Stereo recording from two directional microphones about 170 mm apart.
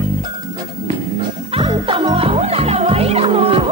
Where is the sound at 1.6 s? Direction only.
30° right (ahead or behind).